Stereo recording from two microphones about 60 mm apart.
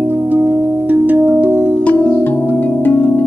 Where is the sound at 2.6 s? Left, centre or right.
Left.